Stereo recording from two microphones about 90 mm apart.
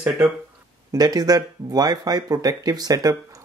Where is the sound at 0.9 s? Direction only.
45° right (ahead or behind).